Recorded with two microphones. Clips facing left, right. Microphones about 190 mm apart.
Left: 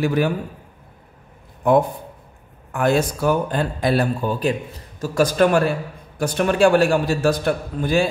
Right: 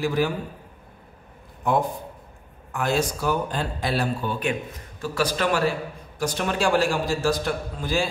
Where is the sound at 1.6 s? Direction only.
60° left (ahead or behind).